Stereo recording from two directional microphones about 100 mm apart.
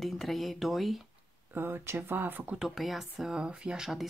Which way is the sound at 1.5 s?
20° right (ahead or behind).